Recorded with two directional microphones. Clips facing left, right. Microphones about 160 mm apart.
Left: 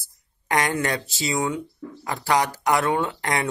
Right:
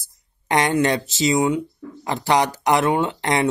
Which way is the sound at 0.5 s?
25° right (ahead or behind).